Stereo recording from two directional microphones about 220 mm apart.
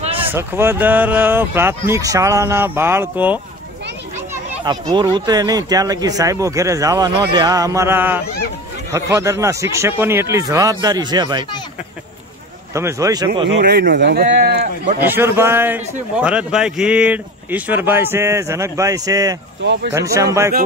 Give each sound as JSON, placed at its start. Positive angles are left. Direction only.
{"t": 0.3, "sound": "a man's voice", "side_deg": -10}
{"t": 12.7, "sound": "a man's voice", "side_deg": -15}
{"t": 13.5, "sound": "speech", "side_deg": -50}
{"t": 15.0, "sound": "a man's voice", "side_deg": -10}
{"t": 19.6, "sound": "speech", "side_deg": -55}
{"t": 20.2, "sound": "a man's voice", "side_deg": -15}